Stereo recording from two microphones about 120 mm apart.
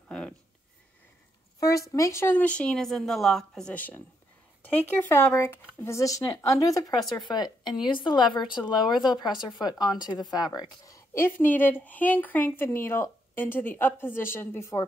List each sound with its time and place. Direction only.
1.6 s speech: 30° left (ahead or behind)